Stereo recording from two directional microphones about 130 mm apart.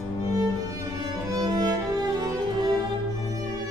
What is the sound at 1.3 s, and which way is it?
Music, 30° right (ahead or behind).